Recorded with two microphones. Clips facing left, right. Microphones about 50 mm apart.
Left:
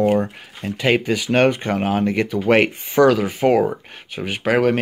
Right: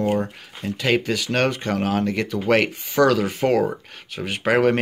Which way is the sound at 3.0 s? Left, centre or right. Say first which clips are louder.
Left 3 dB; centre.